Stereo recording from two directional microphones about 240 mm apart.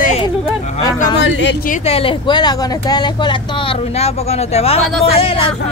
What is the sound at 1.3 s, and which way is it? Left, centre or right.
Speech, left.